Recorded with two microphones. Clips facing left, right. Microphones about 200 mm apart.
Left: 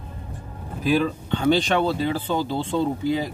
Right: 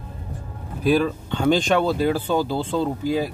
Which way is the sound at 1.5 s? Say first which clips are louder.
Right 1 dB; 45° right (ahead or behind).